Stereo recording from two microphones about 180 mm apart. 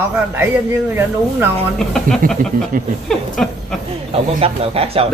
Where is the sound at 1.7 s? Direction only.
5° left (ahead or behind).